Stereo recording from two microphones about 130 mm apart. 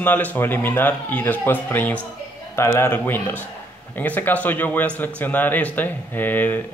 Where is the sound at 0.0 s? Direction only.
15° left (ahead or behind).